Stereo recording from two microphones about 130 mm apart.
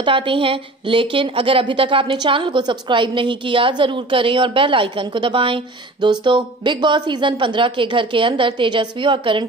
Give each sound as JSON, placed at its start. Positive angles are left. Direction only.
{"t": 0.0, "sound": "a woman's voice", "side_deg": -40}